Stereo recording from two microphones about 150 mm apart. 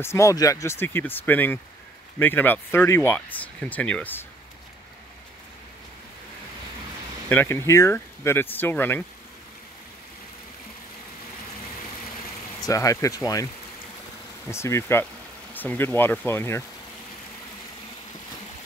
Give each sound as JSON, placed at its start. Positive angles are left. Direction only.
{"t": 0.0, "sound": "speech", "side_deg": 20}
{"t": 7.2, "sound": "speech", "side_deg": 15}
{"t": 12.6, "sound": "speech", "side_deg": 20}
{"t": 14.5, "sound": "speech", "side_deg": 20}